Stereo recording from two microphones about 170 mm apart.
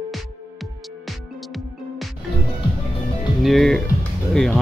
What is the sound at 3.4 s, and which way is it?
Speech, centre (ahead or behind).